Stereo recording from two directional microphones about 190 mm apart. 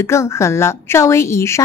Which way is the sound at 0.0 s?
15° left (ahead or behind).